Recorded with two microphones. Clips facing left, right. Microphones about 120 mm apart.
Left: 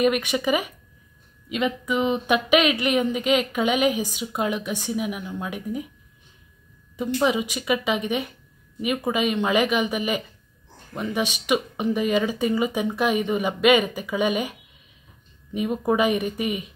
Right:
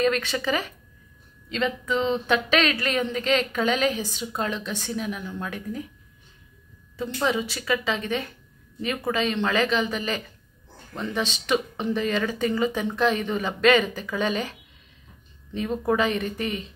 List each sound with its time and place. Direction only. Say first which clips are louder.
0.0 s speech: left 2 dB; 15° left (ahead or behind)
7.0 s speech: left 3 dB; 15° left (ahead or behind)